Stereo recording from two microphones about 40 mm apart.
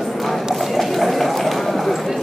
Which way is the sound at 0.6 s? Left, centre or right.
Centre.